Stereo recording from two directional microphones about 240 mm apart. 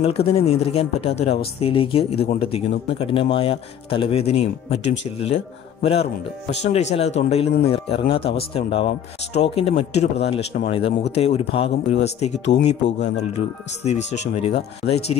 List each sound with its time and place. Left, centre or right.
0.0 s speech: left
13.8 s speech: left